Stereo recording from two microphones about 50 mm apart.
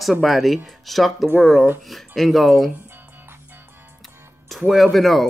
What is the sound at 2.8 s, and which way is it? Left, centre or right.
Music, right.